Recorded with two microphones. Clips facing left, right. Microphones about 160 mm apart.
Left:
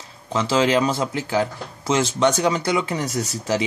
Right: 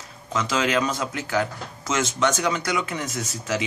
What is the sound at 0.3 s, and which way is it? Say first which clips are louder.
Speech: left 5 dB; 30° left (ahead or behind).